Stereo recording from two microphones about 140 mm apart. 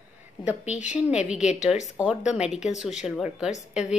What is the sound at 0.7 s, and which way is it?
Speech, 60° left (ahead or behind).